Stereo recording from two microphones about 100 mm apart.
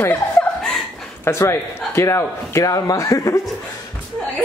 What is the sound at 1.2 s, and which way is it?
A man's voice, 25° left (ahead or behind).